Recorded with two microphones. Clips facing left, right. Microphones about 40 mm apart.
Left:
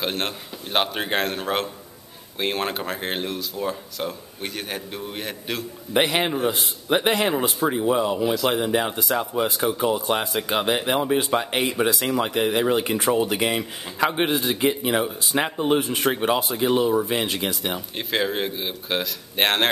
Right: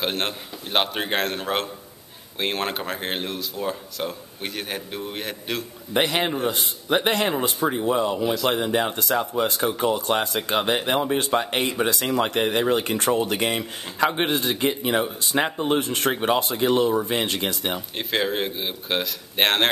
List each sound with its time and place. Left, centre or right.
0.0 s speech: centre
5.9 s speech: centre
15.8 s speech: centre
16.1 s speech: centre